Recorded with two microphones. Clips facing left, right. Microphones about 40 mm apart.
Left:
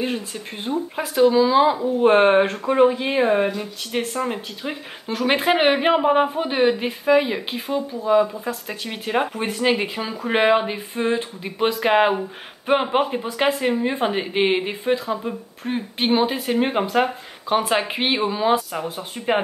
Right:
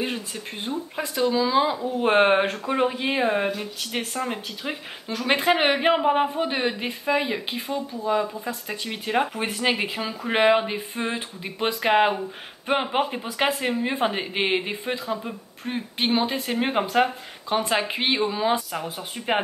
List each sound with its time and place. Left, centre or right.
0.0 s speech: centre
0.7 s speech: centre
2.0 s speech: centre
5.0 s speech: centre
17.0 s speech: centre